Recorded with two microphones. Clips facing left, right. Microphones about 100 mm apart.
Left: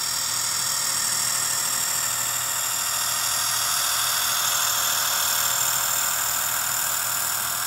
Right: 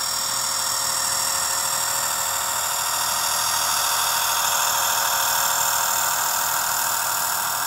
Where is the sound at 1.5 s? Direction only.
20° right (ahead or behind).